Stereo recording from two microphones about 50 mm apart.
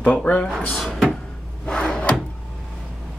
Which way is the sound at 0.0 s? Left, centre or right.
Left.